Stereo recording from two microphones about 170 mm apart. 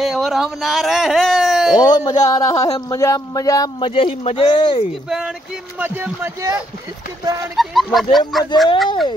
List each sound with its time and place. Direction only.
0.0 s a sound: centre (ahead or behind)
1.8 s speech: 20° left (ahead or behind)
3.9 s speech: 35° left (ahead or behind)
5.8 s speech: 10° right (ahead or behind)
7.5 s speech: centre (ahead or behind)